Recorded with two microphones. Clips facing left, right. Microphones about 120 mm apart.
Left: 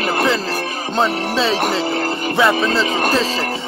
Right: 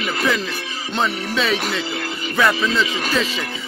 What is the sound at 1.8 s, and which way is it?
Music, 45° left (ahead or behind).